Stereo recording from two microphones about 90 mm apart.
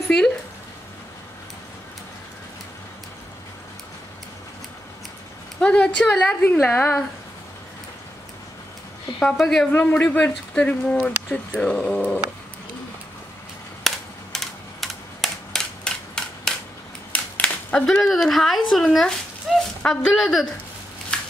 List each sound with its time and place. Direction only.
5.6 s a woman's voice: 10° left (ahead or behind)
6.4 s a woman's voice: 25° left (ahead or behind)
9.2 s speech: 5° left (ahead or behind)
9.7 s speech: 20° left (ahead or behind)
13.8 s typewriter: centre (ahead or behind)
17.1 s a sound: 15° left (ahead or behind)
18.0 s speech: centre (ahead or behind)
19.5 s dog: centre (ahead or behind)
19.8 s speech: 5° left (ahead or behind)
21.1 s a sound: 15° left (ahead or behind)